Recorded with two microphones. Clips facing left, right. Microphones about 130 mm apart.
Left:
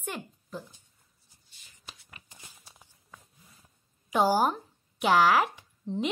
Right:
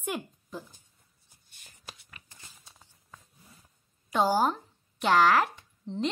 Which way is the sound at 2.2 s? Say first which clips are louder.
Left 1 dB; 15° left (ahead or behind).